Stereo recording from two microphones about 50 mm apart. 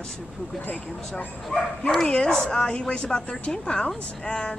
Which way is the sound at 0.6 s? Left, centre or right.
Left.